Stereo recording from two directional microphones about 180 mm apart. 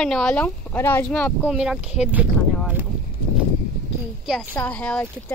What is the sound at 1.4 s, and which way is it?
Speech, 5° right (ahead or behind).